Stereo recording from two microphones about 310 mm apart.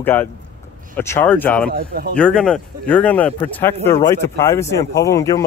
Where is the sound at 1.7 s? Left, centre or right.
Right.